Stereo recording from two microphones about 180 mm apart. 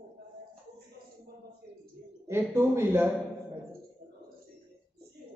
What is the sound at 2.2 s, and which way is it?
Speech, 15° right (ahead or behind).